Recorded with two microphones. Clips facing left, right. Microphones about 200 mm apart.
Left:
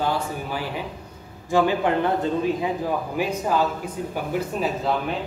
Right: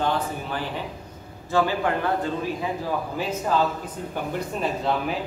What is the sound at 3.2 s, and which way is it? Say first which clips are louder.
A man's voice: left 1 dB; 10° left (ahead or behind).